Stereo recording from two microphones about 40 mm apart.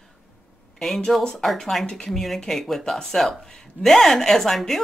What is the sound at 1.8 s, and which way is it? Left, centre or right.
Speech, centre.